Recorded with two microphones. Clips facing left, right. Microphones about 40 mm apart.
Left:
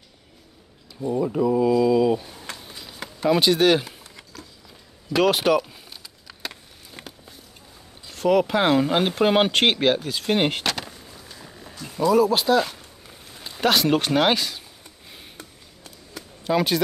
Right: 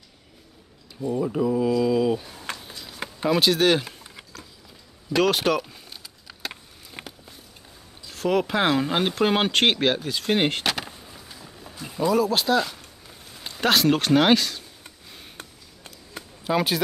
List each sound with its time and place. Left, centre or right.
1.0 s speech: centre
5.1 s speech: centre
8.1 s speech: centre
12.1 s speech: centre
15.3 s a sound: right
16.4 s speech: centre